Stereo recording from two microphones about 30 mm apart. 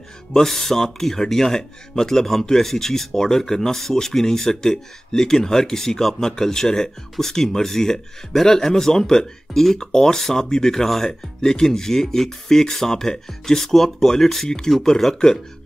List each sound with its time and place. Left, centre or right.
0.3 s speech: centre